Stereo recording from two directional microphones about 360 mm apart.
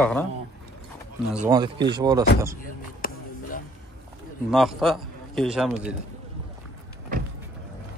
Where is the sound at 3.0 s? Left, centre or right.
Left.